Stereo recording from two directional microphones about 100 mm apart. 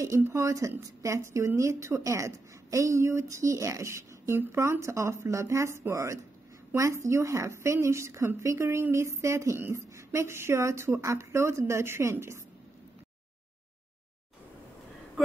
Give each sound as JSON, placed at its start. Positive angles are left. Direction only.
{"t": 0.0, "sound": "a woman's voice", "side_deg": -30}